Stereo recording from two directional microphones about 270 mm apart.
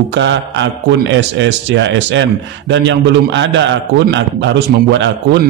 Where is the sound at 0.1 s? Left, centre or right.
Right.